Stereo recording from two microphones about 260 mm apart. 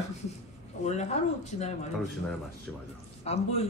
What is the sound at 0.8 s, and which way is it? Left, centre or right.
A woman's voice, left.